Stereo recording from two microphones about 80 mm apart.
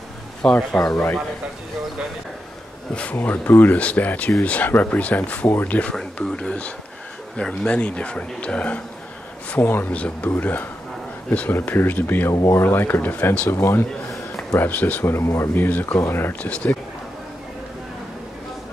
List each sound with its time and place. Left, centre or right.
0.4 s speech: centre
2.9 s a man's voice: centre
13.5 s speech: left
14.6 s speech: centre
15.1 s speech: left
16.4 s a man's voice: centre